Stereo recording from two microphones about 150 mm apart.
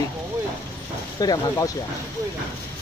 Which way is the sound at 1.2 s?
25° left (ahead or behind).